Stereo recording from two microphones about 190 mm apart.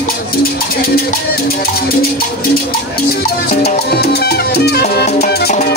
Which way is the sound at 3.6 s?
55° left (ahead or behind).